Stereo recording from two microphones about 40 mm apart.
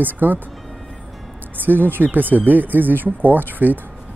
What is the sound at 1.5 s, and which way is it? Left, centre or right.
Speech, right.